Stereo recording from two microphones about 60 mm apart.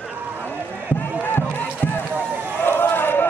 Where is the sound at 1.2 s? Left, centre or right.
Left.